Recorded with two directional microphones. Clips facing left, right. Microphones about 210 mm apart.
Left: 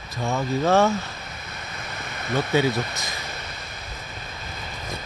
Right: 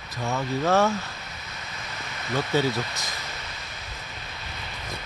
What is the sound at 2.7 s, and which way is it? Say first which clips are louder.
Speech: left 3 dB; 55° left (ahead or behind).